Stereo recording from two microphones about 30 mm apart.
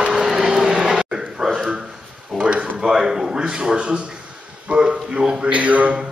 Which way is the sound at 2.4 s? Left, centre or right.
Right.